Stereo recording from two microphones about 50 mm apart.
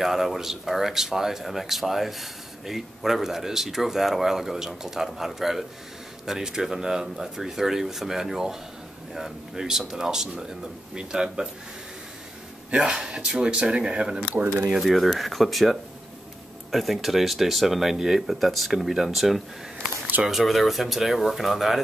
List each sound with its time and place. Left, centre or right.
0.0 s speech: centre
12.7 s speech: centre
14.3 s speech: right
14.8 s speech: centre